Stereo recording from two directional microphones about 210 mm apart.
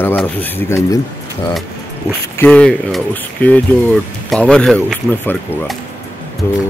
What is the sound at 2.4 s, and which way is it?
Speech, 5° left (ahead or behind).